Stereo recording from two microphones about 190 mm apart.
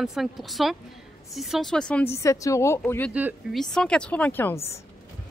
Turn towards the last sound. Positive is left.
turn(degrees=10)  # may be behind; listen again after turning